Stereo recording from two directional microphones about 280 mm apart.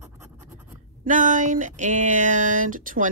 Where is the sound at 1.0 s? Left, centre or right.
Right.